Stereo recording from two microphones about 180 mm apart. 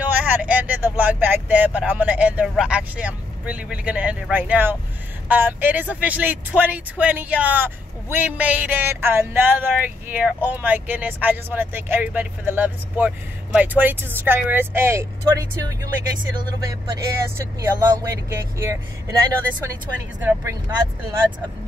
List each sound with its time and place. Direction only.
0.1 s speech: 10° right (ahead or behind)
17.6 s speech: 20° right (ahead or behind)